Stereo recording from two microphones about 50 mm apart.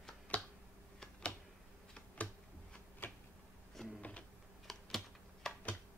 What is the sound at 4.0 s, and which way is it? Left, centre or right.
Printer, left.